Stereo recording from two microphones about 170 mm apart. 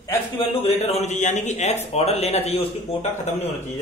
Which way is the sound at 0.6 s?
40° left (ahead or behind).